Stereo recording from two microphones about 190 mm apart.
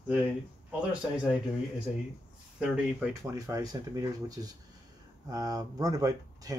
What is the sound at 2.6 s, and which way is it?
Speech, 10° right (ahead or behind).